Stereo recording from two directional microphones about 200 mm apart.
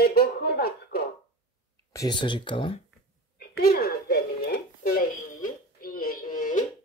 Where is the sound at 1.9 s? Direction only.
20° left (ahead or behind).